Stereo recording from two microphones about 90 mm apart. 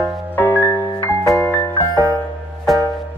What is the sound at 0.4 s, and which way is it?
Music, 25° left (ahead or behind).